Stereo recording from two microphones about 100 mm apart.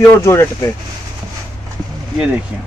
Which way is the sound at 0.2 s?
30° left (ahead or behind).